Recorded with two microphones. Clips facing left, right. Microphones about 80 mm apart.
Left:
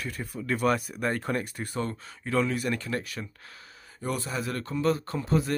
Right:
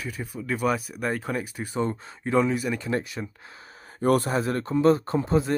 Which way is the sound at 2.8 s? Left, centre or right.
Right.